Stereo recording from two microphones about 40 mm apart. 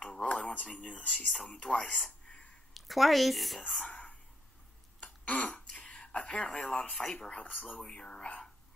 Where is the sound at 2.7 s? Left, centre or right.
Centre.